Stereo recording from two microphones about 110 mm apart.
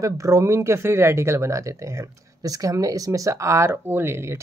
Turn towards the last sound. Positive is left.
turn(degrees=-25)  # may be behind; listen again after turning